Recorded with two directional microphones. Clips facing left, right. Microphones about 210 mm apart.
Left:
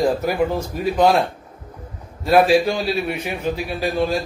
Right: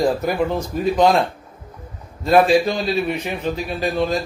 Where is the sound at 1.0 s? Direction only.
5° left (ahead or behind).